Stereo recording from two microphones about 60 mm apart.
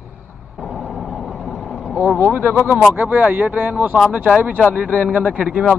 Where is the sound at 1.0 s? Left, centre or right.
Centre.